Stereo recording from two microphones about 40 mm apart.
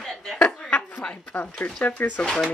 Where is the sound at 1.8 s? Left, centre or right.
Left.